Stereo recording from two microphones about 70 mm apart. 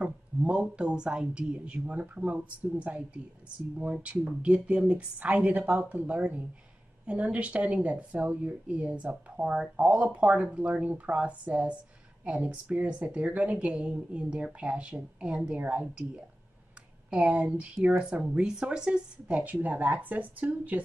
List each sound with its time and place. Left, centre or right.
0.0 s speech: centre
17.1 s speech: centre